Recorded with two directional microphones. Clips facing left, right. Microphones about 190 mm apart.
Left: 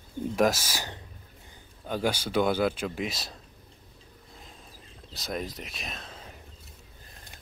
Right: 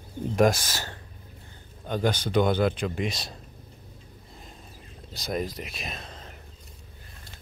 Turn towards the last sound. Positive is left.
turn(degrees=0)  # may be behind; listen again after turning